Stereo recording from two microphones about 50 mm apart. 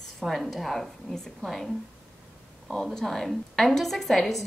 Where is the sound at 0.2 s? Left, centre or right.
Centre.